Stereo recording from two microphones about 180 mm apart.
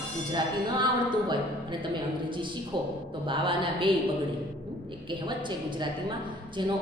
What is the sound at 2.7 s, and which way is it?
A man's voice, 25° right (ahead or behind).